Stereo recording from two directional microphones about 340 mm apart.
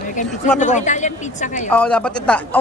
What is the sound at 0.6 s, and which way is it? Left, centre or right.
Speech, left.